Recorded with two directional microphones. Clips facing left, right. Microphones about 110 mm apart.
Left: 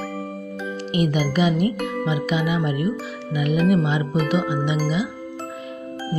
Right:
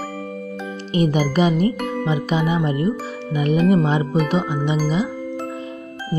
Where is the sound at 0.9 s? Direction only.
35° right (ahead or behind).